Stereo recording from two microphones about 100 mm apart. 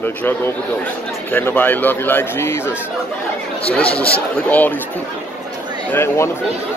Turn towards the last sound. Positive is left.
turn(degrees=25)  # may be behind; listen again after turning